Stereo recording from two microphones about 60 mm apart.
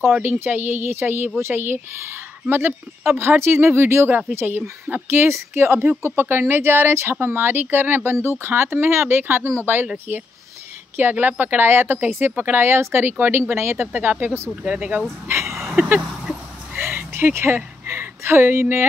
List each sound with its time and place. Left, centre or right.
0.1 s speech: right
5.0 s speech: right
11.0 s speech: right
14.5 s speech: centre
15.2 s speech: right
15.8 s a sound: right
16.7 s a sound: right
17.8 s speech: right